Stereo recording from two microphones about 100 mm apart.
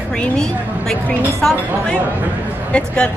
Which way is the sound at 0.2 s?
5° left (ahead or behind).